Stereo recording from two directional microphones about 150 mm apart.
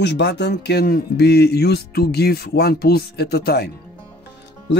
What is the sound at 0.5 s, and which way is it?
Speech, 90° left.